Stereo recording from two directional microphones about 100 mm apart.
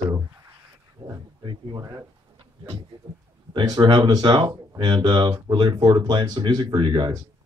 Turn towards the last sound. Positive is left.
turn(degrees=-50)  # may be behind; listen again after turning